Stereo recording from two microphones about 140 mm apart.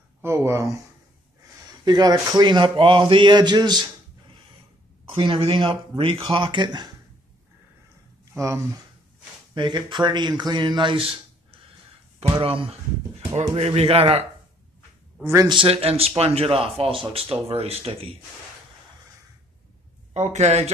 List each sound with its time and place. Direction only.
0.2 s speech: 20° right (ahead or behind)
8.3 s speech: 20° right (ahead or behind)
9.5 s speech: 30° right (ahead or behind)
15.4 s speech: 35° right (ahead or behind)
20.2 s speech: 50° right (ahead or behind)